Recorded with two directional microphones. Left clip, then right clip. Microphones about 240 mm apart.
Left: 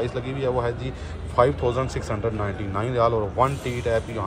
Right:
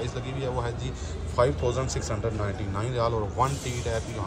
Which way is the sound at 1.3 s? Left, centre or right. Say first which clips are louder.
Left 5 dB; centre.